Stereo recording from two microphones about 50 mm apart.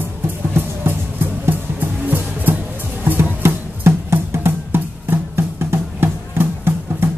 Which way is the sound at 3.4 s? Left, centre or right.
Right.